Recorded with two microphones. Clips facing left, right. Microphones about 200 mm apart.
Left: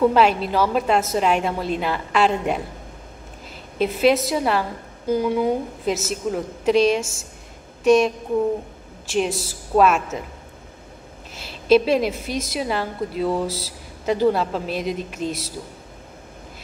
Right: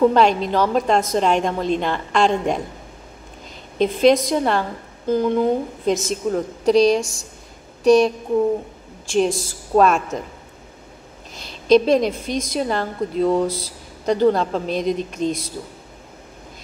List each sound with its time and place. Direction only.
0.0 s a woman's voice: 5° left (ahead or behind)
3.7 s a woman's voice: 5° left (ahead or behind)
7.8 s a sound: 35° right (ahead or behind)
9.0 s a woman's voice: 5° left (ahead or behind)
11.3 s a woman's voice: 5° left (ahead or behind)